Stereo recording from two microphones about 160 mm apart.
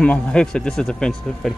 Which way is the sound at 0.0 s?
5° left (ahead or behind).